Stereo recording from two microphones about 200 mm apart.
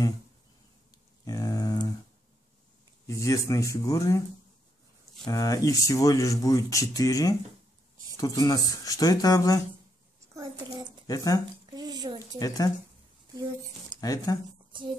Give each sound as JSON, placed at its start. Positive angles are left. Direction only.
{"t": 1.2, "sound": "a sound", "side_deg": 15}
{"t": 3.1, "sound": "speech", "side_deg": 15}
{"t": 5.2, "sound": "speech", "side_deg": 15}
{"t": 10.3, "sound": "a child's voice", "side_deg": -20}
{"t": 11.1, "sound": "speech", "side_deg": 15}
{"t": 11.7, "sound": "a sound", "side_deg": -20}
{"t": 12.4, "sound": "speech", "side_deg": 15}
{"t": 14.0, "sound": "speech", "side_deg": 20}